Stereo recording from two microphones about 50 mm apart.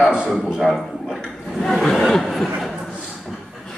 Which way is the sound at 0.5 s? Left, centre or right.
Centre.